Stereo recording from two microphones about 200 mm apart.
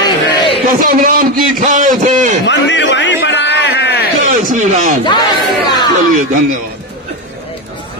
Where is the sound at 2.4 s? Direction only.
65° left (ahead or behind).